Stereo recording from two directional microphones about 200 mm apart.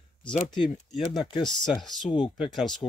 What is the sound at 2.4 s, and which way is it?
Speech, centre (ahead or behind).